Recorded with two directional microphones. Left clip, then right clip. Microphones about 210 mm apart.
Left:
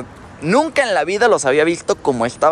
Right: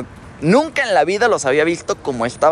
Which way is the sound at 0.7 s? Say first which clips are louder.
Right 1 dB; 25° left (ahead or behind).